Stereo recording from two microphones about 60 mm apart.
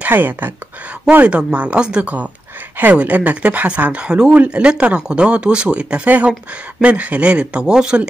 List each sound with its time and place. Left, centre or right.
0.0 s speech: right
1.2 s speech: right
6.0 s speech: right; by 8.1 s centre